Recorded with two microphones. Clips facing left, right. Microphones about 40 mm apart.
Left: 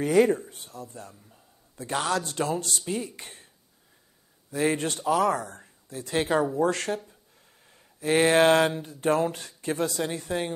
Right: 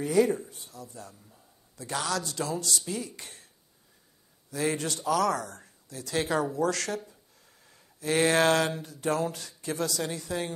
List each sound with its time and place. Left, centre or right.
0.0 s speech: left
4.5 s speech: left
5.0 s speech: left
8.0 s speech: left